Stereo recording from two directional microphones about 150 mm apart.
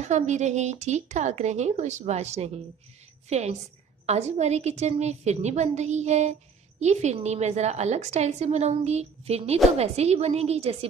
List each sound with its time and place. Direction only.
0.0 s a woman's voice: 50° right (ahead or behind)